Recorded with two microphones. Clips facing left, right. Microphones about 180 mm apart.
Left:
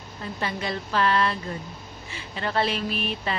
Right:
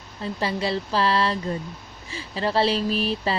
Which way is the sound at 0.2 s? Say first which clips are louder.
Right 4 dB; 30° right (ahead or behind).